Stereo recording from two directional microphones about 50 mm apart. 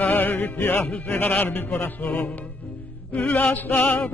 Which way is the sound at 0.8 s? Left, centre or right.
Left.